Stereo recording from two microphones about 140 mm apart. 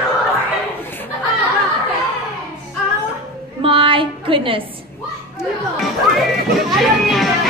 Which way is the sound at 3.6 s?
40° right (ahead or behind).